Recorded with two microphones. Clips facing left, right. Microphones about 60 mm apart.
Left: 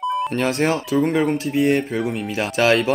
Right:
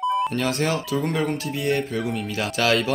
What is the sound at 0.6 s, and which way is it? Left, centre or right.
Speech, left.